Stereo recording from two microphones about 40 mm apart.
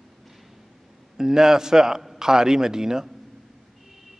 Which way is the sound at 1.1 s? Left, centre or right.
Centre.